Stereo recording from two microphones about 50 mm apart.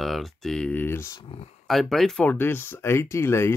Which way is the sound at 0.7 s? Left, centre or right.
Left.